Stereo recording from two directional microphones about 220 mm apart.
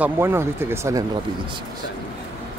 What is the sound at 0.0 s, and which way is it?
Speech, 10° right (ahead or behind).